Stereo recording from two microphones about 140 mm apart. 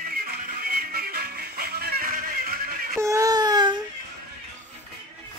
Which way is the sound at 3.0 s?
20° right (ahead or behind).